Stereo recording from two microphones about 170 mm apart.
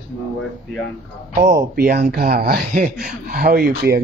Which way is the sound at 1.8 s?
65° right (ahead or behind).